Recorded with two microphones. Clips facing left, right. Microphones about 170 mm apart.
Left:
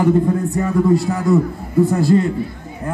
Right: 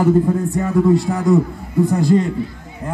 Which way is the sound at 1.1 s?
Centre (ahead or behind).